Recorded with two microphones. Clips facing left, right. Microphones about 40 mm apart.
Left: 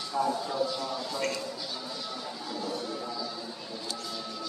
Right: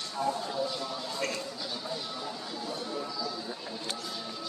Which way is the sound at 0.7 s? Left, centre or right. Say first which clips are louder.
Left 2 dB; centre.